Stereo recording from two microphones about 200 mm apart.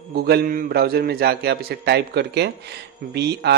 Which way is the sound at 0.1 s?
50° right (ahead or behind).